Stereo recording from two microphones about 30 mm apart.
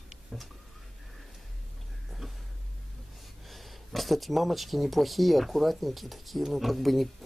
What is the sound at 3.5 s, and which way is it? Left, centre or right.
Speech, centre.